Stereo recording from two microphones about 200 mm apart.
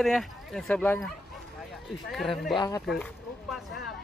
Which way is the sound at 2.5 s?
20° left (ahead or behind).